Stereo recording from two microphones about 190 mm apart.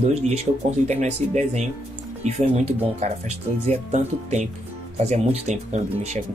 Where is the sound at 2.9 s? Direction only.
35° right (ahead or behind).